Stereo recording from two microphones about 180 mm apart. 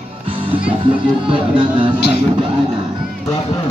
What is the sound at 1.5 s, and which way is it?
Speech, 25° right (ahead or behind).